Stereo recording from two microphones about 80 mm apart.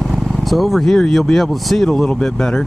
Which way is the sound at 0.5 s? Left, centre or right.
Centre.